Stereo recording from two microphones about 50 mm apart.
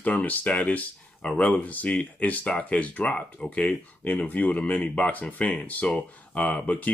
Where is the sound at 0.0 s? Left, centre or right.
Left.